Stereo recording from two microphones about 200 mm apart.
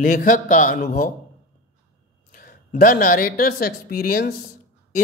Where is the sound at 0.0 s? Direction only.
45° left (ahead or behind).